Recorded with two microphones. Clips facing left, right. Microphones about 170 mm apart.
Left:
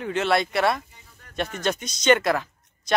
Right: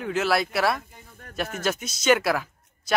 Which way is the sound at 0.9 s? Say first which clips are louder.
Right 7 dB; 50° right (ahead or behind).